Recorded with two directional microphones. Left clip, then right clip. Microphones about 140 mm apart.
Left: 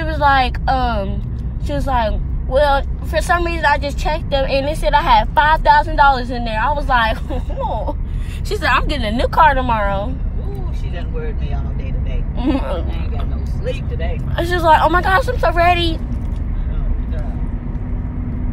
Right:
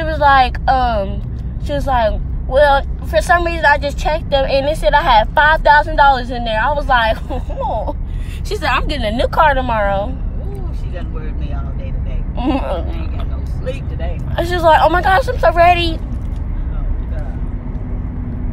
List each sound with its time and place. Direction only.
0.0 s a woman's voice: 10° right (ahead or behind)
8.5 s a woman's voice: 15° left (ahead or behind)
8.8 s speech: 5° left (ahead or behind)
12.4 s speech: centre (ahead or behind)
14.3 s speech: 10° left (ahead or behind)